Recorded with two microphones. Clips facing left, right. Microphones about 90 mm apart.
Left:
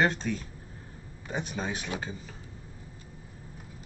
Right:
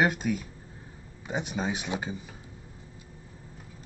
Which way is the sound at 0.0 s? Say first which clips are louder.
Right 1 dB; 10° right (ahead or behind).